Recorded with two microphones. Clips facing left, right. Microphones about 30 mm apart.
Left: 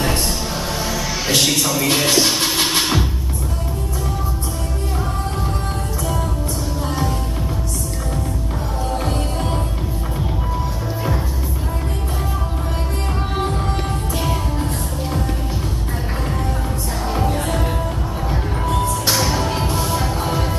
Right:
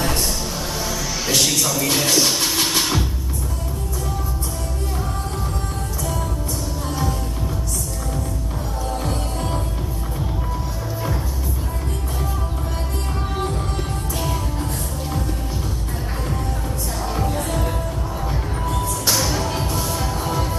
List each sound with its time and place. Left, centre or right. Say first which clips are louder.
0.8 s music: left 2 dB; left
8.9 s music: left 3 dB; left
14.2 s music: left 3 dB; left
17.1 s music: left 3 dB; left